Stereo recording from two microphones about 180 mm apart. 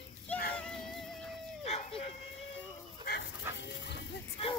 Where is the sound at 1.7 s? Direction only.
35° left (ahead or behind).